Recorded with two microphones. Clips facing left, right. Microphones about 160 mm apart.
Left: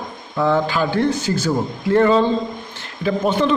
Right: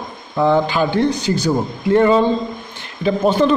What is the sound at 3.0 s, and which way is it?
Speech, 35° right (ahead or behind).